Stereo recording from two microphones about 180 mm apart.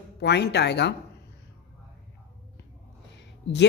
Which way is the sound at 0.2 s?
65° left (ahead or behind).